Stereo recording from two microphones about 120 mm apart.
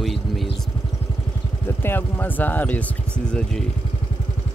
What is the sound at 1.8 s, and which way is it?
Speech, 15° left (ahead or behind).